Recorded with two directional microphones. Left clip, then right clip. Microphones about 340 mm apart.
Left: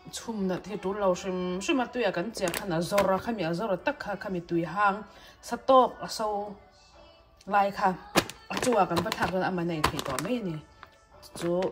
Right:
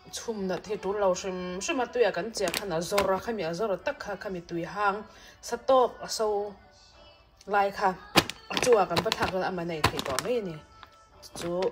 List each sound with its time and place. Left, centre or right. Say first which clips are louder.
0.1 s speech: right 1 dB; centre
7.4 s speech: left 1 dB; centre